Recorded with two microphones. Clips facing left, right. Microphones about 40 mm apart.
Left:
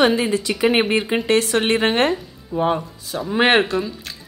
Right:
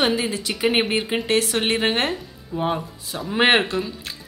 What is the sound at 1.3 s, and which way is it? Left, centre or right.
Speech, left.